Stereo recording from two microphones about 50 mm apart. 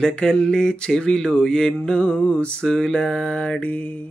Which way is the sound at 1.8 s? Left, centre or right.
Left.